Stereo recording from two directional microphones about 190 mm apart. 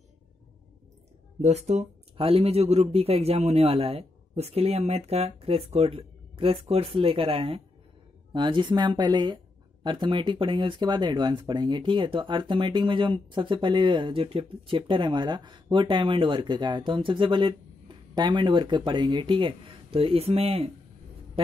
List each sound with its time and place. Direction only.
1.4 s speech: 35° right (ahead or behind)